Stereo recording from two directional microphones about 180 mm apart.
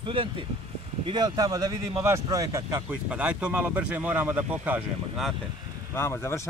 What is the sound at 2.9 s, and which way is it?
Speech, 5° right (ahead or behind).